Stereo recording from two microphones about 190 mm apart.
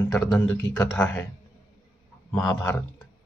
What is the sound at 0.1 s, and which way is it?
Speech, 5° left (ahead or behind).